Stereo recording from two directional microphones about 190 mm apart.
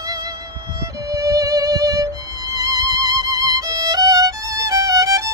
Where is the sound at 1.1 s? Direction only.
15° right (ahead or behind).